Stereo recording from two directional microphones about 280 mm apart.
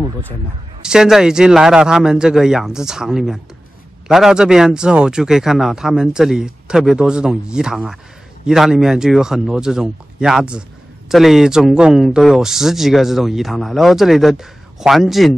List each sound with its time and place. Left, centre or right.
0.8 s speech: centre